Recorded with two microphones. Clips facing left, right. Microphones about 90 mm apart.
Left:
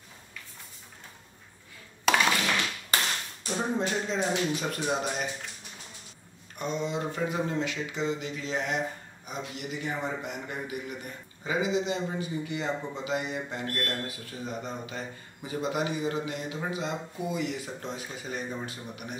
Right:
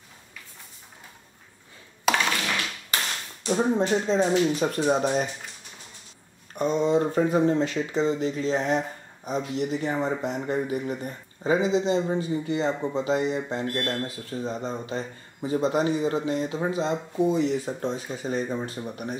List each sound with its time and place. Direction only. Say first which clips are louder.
2.0 s tap: right 1 dB; 5° left (ahead or behind)
3.4 s speech: right 7 dB; 25° right (ahead or behind)
6.5 s speech: right 9 dB; 40° right (ahead or behind)